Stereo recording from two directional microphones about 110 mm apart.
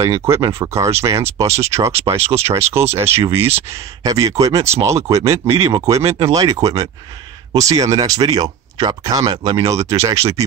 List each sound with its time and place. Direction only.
0.0 s speech: 25° right (ahead or behind)
4.0 s speech: 35° right (ahead or behind)